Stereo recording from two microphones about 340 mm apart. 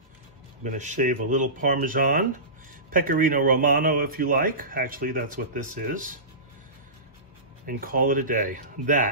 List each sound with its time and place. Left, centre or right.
0.7 s speech: right
7.6 s speech: right